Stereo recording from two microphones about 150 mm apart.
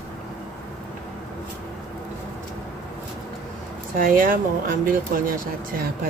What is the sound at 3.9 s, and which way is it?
Speech, 65° right (ahead or behind).